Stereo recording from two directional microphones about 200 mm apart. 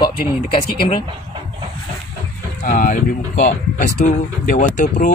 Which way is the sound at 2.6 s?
45° left (ahead or behind).